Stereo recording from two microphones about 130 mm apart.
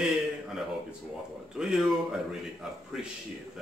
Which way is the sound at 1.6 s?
5° right (ahead or behind).